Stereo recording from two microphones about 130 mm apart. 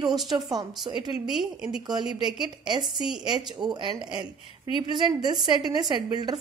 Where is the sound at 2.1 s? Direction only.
35° right (ahead or behind).